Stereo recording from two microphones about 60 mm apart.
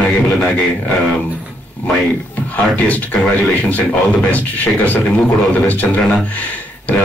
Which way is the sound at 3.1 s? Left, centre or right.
Centre.